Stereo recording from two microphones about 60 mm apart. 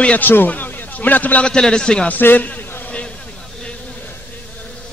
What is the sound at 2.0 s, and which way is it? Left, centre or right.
Speech, left.